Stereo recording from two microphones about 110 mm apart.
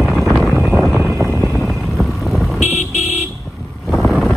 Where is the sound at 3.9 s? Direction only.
Centre (ahead or behind).